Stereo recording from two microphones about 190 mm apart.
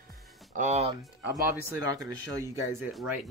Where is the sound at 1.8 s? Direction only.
20° right (ahead or behind).